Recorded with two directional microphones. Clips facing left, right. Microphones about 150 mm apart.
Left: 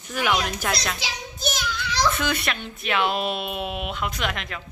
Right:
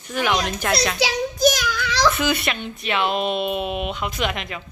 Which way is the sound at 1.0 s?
85° right.